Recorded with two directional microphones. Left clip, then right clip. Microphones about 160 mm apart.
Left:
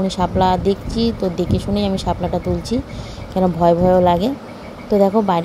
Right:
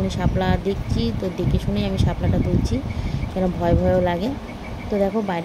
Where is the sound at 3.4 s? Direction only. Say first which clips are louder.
Left 7 dB; 25° left (ahead or behind).